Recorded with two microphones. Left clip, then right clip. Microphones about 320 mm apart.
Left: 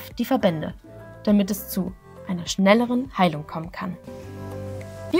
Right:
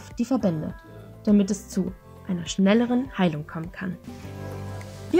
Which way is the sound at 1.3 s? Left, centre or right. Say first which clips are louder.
Left 1 dB; left.